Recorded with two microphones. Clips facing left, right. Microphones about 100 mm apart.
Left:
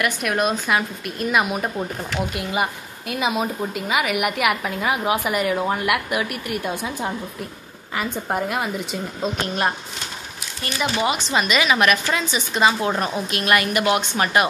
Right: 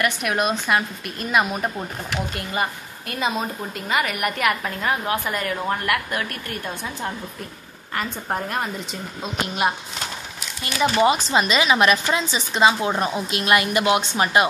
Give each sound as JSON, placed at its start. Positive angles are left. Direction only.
{"t": 0.0, "sound": "a woman's voice", "side_deg": 0}
{"t": 10.6, "sound": "speech", "side_deg": -30}